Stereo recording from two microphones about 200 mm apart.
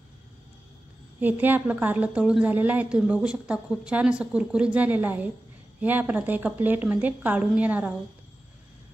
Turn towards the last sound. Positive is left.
turn(degrees=-5)  # may be behind; listen again after turning